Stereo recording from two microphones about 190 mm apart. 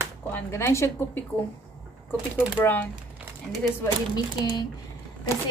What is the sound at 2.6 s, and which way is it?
Speech, 10° left (ahead or behind).